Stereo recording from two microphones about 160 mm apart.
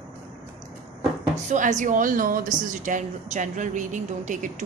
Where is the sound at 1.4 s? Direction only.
50° right (ahead or behind).